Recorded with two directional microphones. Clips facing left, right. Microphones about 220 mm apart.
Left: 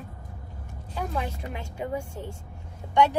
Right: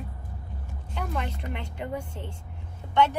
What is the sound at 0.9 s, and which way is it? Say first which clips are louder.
A woman's voice: left 2 dB; 10° left (ahead or behind).